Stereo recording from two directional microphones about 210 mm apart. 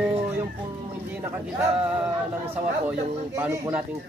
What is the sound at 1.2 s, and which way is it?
Speech, 10° right (ahead or behind).